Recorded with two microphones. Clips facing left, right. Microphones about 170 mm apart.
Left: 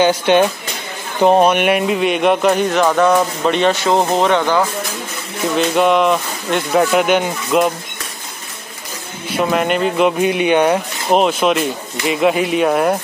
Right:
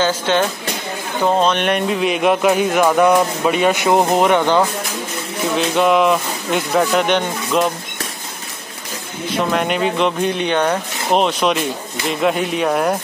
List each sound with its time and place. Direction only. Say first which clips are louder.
0.0 s speech: left 4 dB; 15° left (ahead or behind); by 4.6 s 15° right (ahead or behind)
5.6 s speech: left 1 dB; centre (ahead or behind)
9.5 s speech: left 3 dB; centre (ahead or behind)